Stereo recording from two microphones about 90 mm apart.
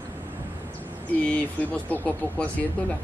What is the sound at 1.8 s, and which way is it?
Speech, 15° left (ahead or behind).